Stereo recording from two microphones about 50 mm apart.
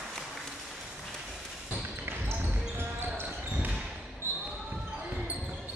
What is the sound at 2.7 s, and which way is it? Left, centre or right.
Basketball bounce, right.